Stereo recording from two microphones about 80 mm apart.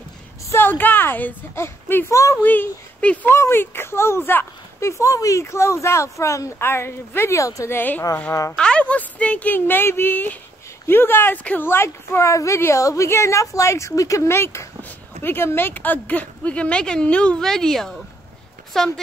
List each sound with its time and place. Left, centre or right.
0.5 s a woman's voice: left
3.3 s speech: left
7.7 s speech: left
8.3 s speech: left
8.5 s speech: centre